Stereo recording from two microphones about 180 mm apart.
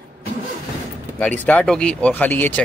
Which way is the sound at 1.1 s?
10° left (ahead or behind).